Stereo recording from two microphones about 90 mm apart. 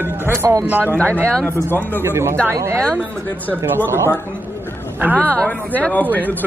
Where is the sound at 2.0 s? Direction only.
30° right (ahead or behind).